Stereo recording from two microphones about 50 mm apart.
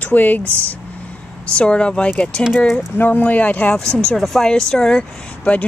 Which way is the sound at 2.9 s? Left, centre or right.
Left.